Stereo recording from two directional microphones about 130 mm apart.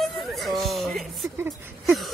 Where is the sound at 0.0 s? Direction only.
Centre (ahead or behind).